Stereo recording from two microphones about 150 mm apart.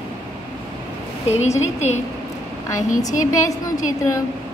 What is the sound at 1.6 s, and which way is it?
Speech, 50° left (ahead or behind).